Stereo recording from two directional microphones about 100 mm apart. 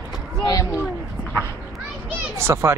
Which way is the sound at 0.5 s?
35° left (ahead or behind).